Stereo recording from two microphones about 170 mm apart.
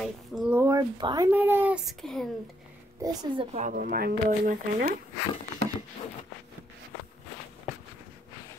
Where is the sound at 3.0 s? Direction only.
25° right (ahead or behind).